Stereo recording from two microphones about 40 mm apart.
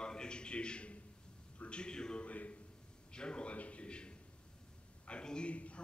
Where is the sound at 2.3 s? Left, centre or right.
Left.